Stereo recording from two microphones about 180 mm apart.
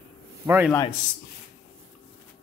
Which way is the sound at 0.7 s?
15° left (ahead or behind).